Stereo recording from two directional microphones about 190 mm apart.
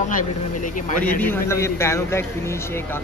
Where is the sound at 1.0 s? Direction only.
10° left (ahead or behind).